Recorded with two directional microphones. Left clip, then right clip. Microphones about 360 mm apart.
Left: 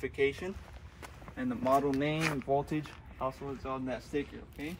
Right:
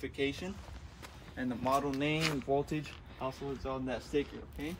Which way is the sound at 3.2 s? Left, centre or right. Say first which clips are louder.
Left 2 dB; centre.